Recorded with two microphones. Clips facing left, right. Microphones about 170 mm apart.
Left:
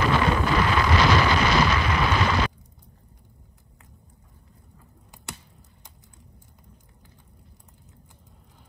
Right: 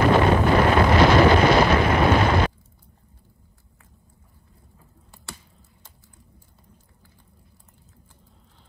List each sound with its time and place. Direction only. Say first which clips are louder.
0.0 s wind noise: right 5 dB; 40° right (ahead or behind)